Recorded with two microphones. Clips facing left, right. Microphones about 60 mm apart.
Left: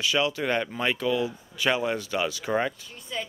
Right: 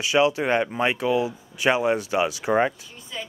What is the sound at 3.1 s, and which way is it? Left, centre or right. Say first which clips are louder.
Speech: left 1 dB; centre.